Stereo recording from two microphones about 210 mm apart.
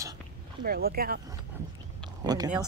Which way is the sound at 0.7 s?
45° right (ahead or behind).